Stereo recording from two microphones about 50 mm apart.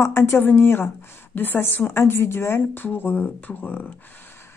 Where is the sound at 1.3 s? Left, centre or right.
Left.